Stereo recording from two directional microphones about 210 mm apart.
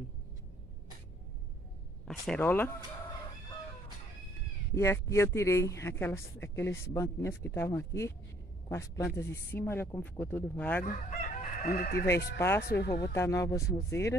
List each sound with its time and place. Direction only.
2.0 s speech: 5° left (ahead or behind)
4.7 s speech: 10° left (ahead or behind)
10.9 s chicken: 40° left (ahead or behind)
11.8 s speech: 50° left (ahead or behind)
12.4 s speech: 10° left (ahead or behind)
12.6 s speech: 50° left (ahead or behind)
13.0 s speech: 15° left (ahead or behind)